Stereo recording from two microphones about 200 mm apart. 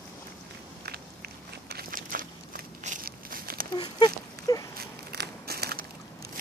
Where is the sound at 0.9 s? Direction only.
50° right (ahead or behind).